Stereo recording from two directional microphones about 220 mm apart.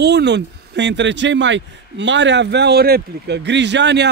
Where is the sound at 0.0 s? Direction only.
50° right (ahead or behind).